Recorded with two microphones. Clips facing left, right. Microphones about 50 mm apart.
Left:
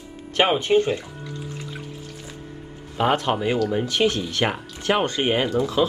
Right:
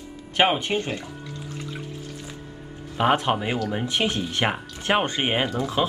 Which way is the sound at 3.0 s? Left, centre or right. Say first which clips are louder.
Even; centre.